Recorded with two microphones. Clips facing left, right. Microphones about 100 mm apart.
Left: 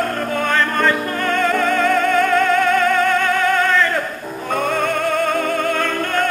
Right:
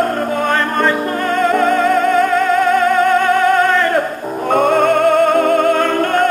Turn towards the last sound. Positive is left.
turn(degrees=-40)  # may be behind; listen again after turning